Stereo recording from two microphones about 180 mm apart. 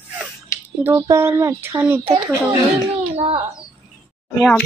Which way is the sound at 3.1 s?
35° right (ahead or behind).